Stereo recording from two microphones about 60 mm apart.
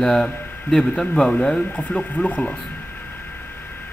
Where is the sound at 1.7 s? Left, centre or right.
Left.